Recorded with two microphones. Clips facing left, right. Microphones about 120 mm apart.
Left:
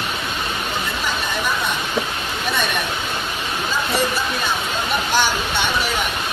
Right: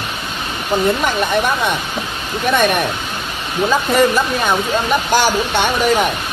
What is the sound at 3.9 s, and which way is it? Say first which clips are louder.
Speech: right 7 dB; 55° right (ahead or behind).